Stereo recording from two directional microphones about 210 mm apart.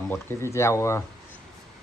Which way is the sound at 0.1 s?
10° left (ahead or behind).